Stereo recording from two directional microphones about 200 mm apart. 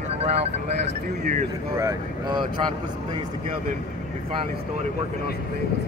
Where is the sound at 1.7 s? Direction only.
20° right (ahead or behind).